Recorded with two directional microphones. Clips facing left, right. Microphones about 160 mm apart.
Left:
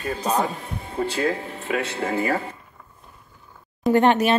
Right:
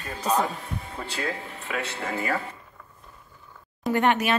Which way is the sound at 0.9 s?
40° left (ahead or behind).